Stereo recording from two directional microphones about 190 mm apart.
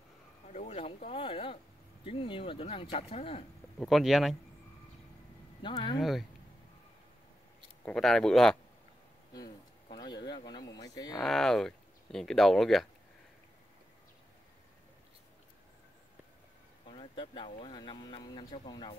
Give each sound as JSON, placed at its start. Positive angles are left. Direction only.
{"t": 0.5, "sound": "speech", "side_deg": 35}
{"t": 3.8, "sound": "speech", "side_deg": 0}
{"t": 5.6, "sound": "speech", "side_deg": 25}
{"t": 5.9, "sound": "speech", "side_deg": 0}
{"t": 7.8, "sound": "speech", "side_deg": 5}
{"t": 9.3, "sound": "speech", "side_deg": 20}
{"t": 11.1, "sound": "speech", "side_deg": 0}
{"t": 16.8, "sound": "speech", "side_deg": 25}